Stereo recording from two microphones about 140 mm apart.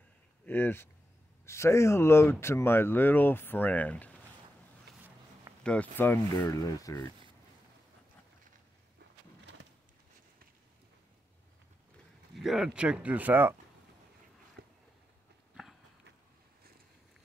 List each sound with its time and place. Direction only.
0.5 s speech: 15° left (ahead or behind)
5.6 s speech: 10° left (ahead or behind); by 7.1 s 25° left (ahead or behind)
12.4 s speech: 5° right (ahead or behind)
14.6 s a sound: 90° right